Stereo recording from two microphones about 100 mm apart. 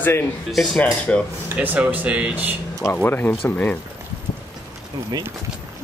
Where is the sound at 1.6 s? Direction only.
15° right (ahead or behind).